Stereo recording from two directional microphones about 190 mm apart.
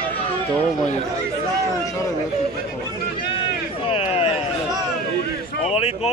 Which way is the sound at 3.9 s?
30° left (ahead or behind).